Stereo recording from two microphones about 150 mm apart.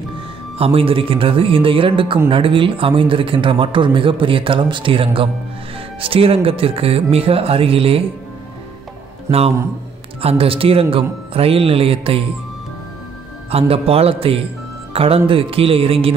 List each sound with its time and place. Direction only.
0.6 s speech: 40° right (ahead or behind)
10.2 s speech: 40° right (ahead or behind)
13.5 s speech: 40° right (ahead or behind)